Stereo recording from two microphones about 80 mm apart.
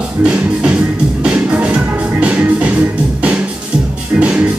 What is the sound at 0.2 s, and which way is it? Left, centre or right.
Music, centre.